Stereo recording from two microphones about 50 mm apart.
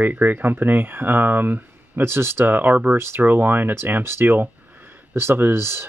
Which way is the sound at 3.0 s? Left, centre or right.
Right.